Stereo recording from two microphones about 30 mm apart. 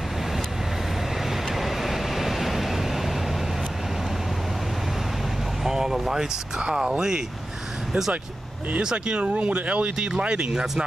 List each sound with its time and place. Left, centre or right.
1.5 s vehicle: centre
5.6 s vehicle: centre
6.7 s speech: right
9.0 s speech: right
9.3 s speech: right
9.9 s speech: right